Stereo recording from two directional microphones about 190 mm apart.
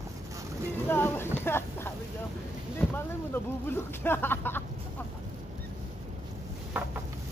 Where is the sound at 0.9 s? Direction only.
10° left (ahead or behind).